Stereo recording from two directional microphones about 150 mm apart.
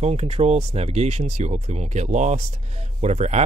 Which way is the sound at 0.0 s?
45° right (ahead or behind).